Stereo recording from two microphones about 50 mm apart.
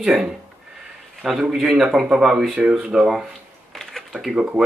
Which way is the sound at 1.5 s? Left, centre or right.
Centre.